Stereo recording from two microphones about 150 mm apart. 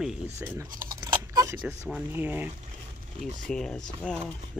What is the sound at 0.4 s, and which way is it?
Speech, 15° right (ahead or behind).